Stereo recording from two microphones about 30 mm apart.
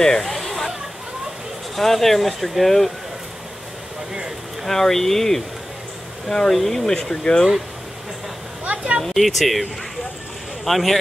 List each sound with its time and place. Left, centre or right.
0.2 s a sound: centre
1.8 s speech: centre
4.6 s speech: centre
6.5 s speech: centre
6.9 s speech: left
8.6 s a sound: right
9.1 s speech: centre